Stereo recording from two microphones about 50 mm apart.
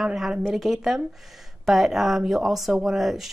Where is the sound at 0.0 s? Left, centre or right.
Centre.